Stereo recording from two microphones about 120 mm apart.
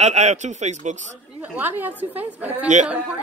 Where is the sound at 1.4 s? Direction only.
15° right (ahead or behind).